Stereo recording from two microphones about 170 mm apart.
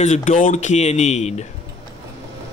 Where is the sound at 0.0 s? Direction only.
40° left (ahead or behind).